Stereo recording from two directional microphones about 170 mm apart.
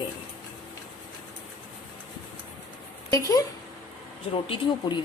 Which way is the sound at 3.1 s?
20° left (ahead or behind).